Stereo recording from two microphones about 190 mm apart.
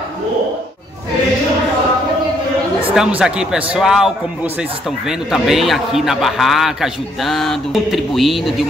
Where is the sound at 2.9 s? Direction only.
5° right (ahead or behind).